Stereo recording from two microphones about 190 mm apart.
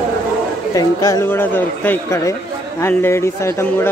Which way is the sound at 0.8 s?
20° left (ahead or behind).